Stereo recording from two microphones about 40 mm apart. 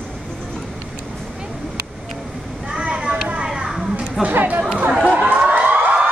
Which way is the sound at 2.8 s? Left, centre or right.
Right.